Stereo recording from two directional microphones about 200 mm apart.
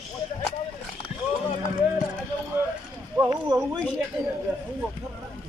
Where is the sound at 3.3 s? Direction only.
20° right (ahead or behind).